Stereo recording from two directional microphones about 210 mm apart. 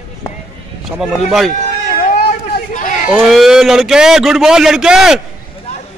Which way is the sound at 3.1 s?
5° right (ahead or behind).